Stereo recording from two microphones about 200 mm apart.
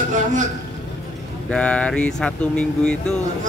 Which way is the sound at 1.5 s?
5° left (ahead or behind).